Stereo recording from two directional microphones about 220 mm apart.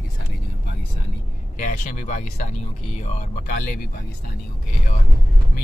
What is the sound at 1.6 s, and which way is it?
Speech, 35° left (ahead or behind).